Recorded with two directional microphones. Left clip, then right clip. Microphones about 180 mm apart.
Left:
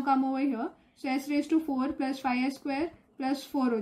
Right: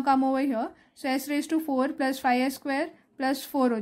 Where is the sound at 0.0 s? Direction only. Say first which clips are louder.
Right 4 dB; 60° right (ahead or behind).